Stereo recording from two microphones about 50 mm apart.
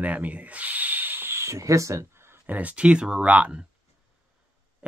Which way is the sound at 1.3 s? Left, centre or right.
Right.